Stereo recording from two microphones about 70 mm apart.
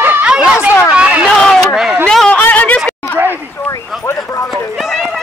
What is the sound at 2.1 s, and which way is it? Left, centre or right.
Speech, centre.